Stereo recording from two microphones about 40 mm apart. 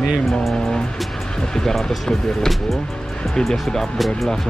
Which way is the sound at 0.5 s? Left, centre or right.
Centre.